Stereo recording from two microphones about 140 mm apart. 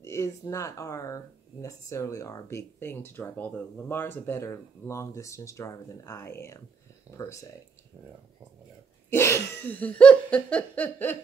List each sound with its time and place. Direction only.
0.0 s speech: 20° left (ahead or behind)
9.1 s laughter: 15° left (ahead or behind)